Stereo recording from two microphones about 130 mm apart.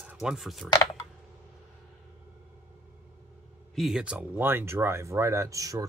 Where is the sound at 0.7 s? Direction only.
25° left (ahead or behind).